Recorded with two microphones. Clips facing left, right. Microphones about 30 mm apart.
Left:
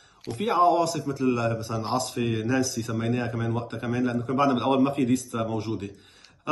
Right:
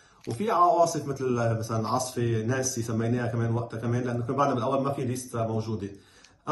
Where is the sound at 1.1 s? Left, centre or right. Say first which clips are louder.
Left 2 dB; left.